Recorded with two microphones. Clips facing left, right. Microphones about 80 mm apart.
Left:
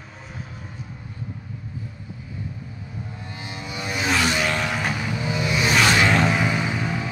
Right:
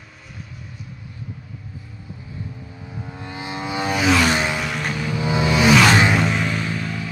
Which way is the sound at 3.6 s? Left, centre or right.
Right.